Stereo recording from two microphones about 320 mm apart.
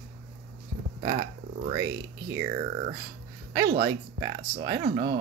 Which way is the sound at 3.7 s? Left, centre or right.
Right.